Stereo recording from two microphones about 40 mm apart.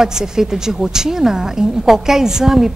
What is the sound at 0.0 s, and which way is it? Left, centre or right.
Speech, centre.